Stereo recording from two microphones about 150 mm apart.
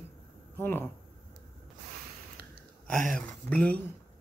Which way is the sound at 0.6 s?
15° left (ahead or behind).